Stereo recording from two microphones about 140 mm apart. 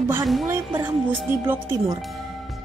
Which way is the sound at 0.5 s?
20° right (ahead or behind).